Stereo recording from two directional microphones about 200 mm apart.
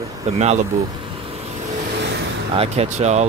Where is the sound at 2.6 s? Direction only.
35° right (ahead or behind).